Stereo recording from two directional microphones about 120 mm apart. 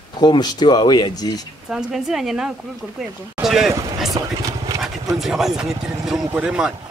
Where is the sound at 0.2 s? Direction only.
35° left (ahead or behind).